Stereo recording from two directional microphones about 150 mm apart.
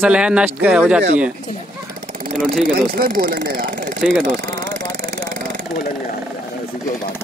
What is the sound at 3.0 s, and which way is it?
Speech, 70° right (ahead or behind).